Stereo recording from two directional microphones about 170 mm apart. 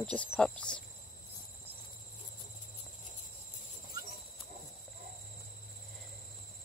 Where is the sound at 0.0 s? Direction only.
5° left (ahead or behind).